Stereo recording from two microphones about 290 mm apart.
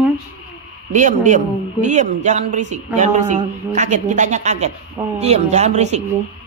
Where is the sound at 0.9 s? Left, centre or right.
Right.